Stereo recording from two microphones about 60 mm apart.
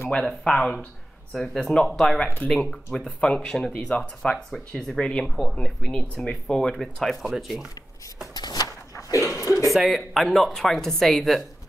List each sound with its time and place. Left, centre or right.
0.1 s speech: centre
2.4 s speech: centre
9.4 s a sound: left
9.7 s speech: centre